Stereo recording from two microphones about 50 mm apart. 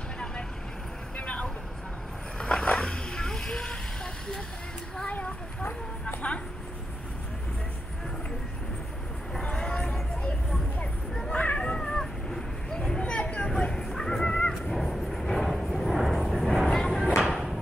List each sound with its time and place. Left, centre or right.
1.1 s vehicle: left
5.0 s a sound: left
9.3 s vehicle: centre
11.3 s cat: left
13.6 s dog: centre
14.6 s vehicle: centre
16.7 s a sound: centre
17.2 s music: centre